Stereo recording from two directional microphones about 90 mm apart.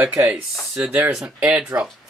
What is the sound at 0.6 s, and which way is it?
Speech, centre (ahead or behind).